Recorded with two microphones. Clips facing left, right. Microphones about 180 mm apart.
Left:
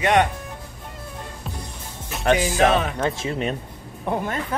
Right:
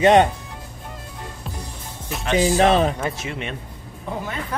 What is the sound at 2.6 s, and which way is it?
Speech, 35° right (ahead or behind).